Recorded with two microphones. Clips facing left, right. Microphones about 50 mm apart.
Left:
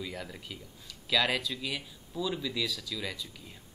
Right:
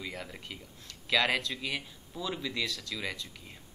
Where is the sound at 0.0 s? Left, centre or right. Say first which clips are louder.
Left 1 dB; centre.